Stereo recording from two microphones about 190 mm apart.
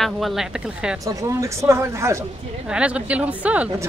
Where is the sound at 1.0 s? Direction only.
15° right (ahead or behind).